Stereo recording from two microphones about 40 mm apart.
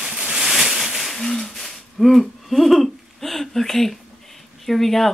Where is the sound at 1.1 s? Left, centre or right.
Centre.